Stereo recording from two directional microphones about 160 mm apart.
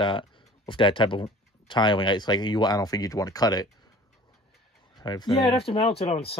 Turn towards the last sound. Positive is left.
turn(degrees=35)  # may be behind; listen again after turning